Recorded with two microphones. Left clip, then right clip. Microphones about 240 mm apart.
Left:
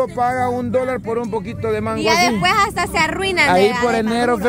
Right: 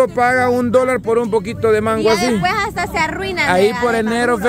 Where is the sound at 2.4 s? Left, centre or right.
Centre.